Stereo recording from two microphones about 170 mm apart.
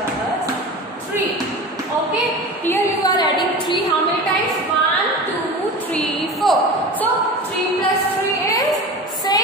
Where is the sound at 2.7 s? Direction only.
20° left (ahead or behind).